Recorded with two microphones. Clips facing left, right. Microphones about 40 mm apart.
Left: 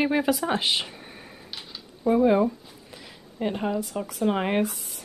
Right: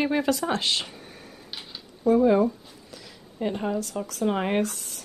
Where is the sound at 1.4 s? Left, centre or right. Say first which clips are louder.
Right 1 dB; centre.